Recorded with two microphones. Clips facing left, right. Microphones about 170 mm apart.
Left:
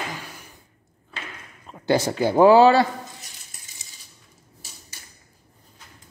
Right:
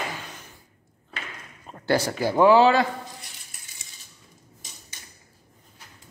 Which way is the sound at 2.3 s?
35° left (ahead or behind).